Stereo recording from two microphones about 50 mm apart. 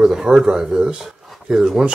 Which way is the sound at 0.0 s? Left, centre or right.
Centre.